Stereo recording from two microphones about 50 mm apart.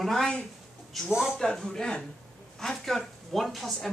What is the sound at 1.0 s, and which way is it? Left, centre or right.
Speech, centre.